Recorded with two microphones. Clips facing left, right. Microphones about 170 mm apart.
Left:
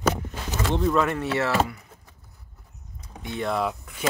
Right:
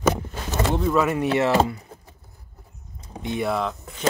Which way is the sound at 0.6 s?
5° right (ahead or behind).